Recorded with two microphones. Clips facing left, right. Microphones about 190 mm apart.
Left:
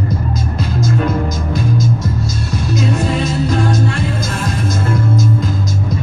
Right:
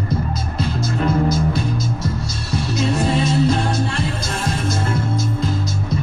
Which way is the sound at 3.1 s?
30° right (ahead or behind).